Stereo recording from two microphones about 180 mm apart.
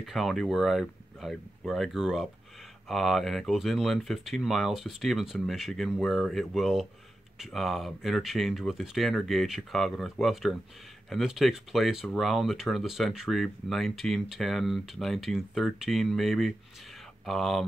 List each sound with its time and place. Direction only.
0.0 s speech: centre (ahead or behind)